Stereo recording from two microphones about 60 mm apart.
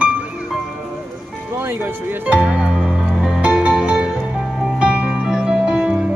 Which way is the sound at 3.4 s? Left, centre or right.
Right.